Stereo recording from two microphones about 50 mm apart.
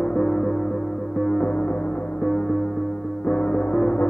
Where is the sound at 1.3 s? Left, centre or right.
Left.